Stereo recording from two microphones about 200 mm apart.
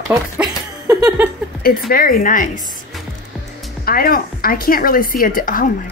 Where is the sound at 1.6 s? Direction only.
45° left (ahead or behind).